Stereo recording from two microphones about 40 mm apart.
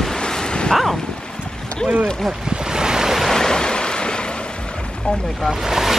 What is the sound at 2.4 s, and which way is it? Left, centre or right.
Waves, centre.